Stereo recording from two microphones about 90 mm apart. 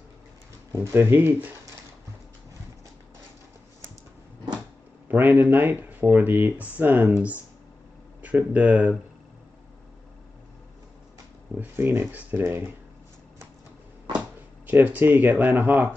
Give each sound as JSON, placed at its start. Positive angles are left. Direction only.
{"t": 0.9, "sound": "speech", "side_deg": -25}
{"t": 5.0, "sound": "speech", "side_deg": -20}
{"t": 8.2, "sound": "speech", "side_deg": -15}
{"t": 11.5, "sound": "speech", "side_deg": -25}
{"t": 14.7, "sound": "speech", "side_deg": -20}